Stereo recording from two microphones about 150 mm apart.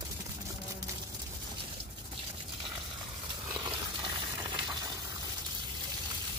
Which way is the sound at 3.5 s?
30° right (ahead or behind).